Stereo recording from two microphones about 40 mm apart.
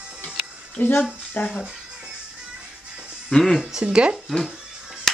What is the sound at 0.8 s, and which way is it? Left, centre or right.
Speech, left.